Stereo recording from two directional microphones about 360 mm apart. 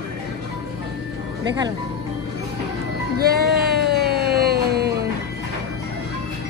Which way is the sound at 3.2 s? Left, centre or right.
Right.